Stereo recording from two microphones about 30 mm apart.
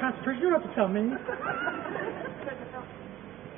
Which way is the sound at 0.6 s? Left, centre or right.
Centre.